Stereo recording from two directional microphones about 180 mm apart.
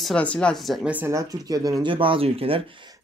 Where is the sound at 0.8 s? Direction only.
10° right (ahead or behind); by 2.6 s 30° right (ahead or behind).